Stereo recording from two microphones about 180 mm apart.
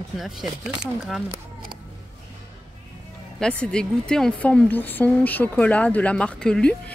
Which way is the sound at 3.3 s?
5° left (ahead or behind).